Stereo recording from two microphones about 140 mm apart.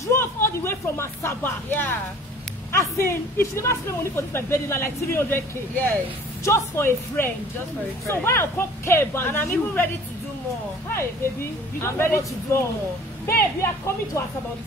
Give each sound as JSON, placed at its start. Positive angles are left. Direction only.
{"t": 0.0, "sound": "speech", "side_deg": 20}
{"t": 11.8, "sound": "speech", "side_deg": 15}